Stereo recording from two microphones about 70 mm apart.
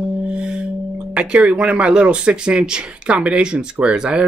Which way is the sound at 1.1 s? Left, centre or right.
Centre.